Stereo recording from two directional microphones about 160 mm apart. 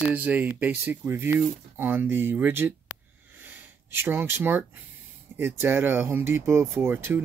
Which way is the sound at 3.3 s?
10° right (ahead or behind).